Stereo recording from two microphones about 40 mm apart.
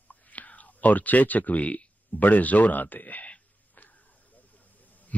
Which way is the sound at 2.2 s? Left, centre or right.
Left.